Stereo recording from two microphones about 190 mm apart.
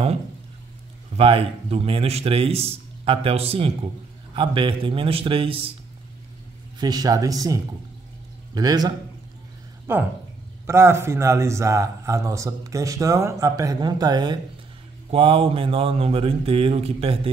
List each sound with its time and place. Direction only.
1.1 s a man's voice: 30° right (ahead or behind)
6.8 s a man's voice: 20° right (ahead or behind)